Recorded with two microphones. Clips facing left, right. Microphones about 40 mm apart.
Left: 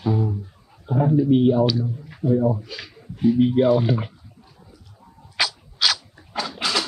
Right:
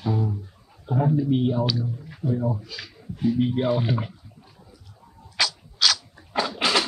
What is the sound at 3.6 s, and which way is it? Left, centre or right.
Speech, centre.